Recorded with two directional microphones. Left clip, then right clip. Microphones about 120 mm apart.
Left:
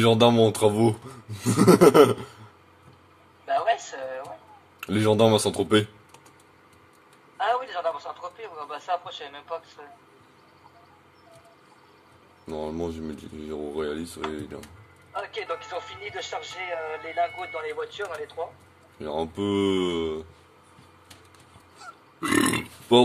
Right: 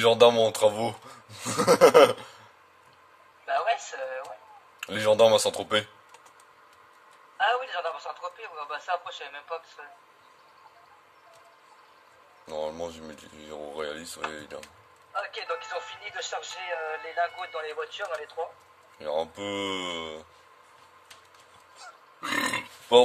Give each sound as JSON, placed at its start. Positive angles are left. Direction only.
{"t": 0.0, "sound": "speech", "side_deg": -5}
{"t": 3.4, "sound": "a sound", "side_deg": 25}
{"t": 4.7, "sound": "speech", "side_deg": -5}
{"t": 7.3, "sound": "a sound", "side_deg": 25}
{"t": 12.4, "sound": "speech", "side_deg": -10}
{"t": 15.1, "sound": "speech", "side_deg": 25}
{"t": 18.9, "sound": "speech", "side_deg": -5}
{"t": 21.8, "sound": "grunt", "side_deg": -5}
{"t": 22.2, "sound": "burping", "side_deg": 10}
{"t": 22.9, "sound": "speech", "side_deg": 0}